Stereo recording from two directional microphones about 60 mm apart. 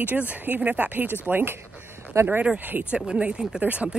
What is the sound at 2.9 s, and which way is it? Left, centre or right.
Speech, centre.